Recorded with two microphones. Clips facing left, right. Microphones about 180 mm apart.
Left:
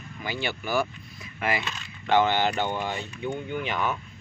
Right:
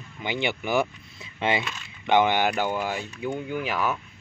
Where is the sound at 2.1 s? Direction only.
15° right (ahead or behind).